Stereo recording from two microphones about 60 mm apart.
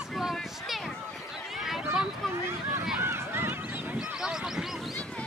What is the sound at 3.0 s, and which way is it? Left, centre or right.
Run, right.